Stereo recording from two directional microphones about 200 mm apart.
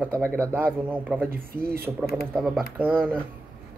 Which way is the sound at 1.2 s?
45° right (ahead or behind).